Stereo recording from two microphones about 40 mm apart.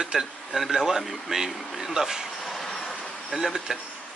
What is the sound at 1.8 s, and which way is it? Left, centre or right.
Speech, centre.